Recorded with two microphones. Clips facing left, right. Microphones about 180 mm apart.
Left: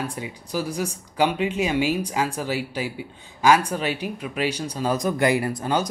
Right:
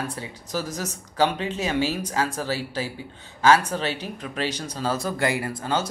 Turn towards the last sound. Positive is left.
turn(degrees=15)  # may be behind; listen again after turning